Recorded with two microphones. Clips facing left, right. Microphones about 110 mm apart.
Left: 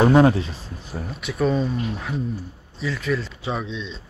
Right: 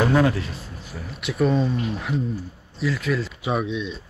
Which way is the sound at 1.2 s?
Centre (ahead or behind).